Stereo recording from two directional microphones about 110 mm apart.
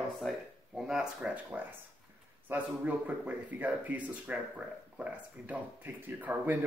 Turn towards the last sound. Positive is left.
turn(degrees=-15)  # may be behind; listen again after turning